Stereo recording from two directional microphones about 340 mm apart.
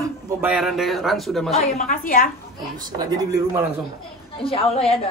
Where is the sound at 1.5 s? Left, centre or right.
Centre.